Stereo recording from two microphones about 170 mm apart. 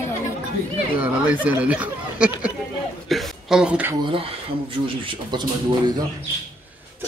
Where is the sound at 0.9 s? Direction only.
10° right (ahead or behind).